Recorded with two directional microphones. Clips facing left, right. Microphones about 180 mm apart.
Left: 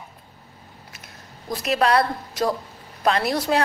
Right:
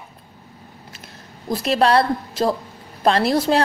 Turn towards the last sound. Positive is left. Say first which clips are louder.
# right 4 dB
turn(degrees=-30)  # may be behind; listen again after turning